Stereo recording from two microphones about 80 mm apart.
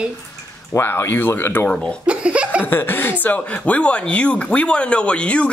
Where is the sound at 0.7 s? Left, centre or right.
Left.